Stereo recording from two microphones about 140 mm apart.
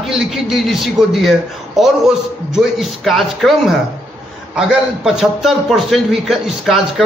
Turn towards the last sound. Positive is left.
turn(degrees=0)  # may be behind; listen again after turning